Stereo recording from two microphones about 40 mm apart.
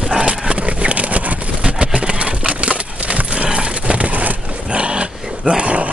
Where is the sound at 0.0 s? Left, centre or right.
Centre.